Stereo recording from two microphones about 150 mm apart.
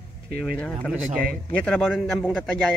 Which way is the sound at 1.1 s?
75° right (ahead or behind).